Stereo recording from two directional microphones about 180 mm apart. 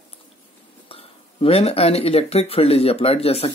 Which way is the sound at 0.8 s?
30° left (ahead or behind).